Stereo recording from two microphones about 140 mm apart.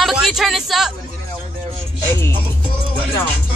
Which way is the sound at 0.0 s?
Centre (ahead or behind).